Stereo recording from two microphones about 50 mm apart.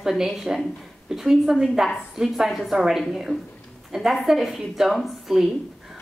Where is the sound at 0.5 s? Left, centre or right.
Centre.